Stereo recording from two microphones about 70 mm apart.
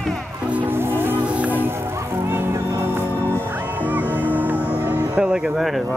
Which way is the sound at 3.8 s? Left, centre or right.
Right.